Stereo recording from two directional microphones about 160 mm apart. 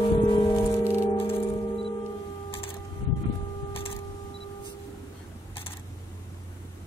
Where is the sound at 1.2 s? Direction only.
35° left (ahead or behind).